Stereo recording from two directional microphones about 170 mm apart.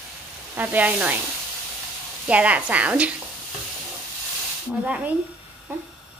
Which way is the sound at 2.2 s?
10° right (ahead or behind).